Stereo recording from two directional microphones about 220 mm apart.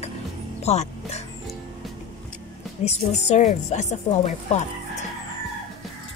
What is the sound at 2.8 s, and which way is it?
Speech, 30° left (ahead or behind).